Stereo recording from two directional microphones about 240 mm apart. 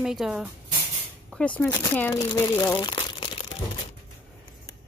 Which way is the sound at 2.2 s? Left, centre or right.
Centre.